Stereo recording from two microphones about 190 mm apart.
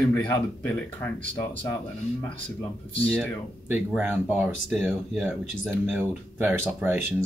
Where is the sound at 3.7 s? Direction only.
10° right (ahead or behind).